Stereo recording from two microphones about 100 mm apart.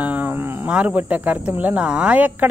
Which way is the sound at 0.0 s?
15° right (ahead or behind).